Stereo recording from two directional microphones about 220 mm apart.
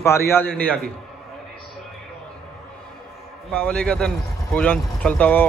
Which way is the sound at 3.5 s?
5° left (ahead or behind).